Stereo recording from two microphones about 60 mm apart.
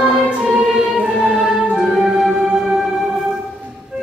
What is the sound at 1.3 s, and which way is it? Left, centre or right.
Music, centre.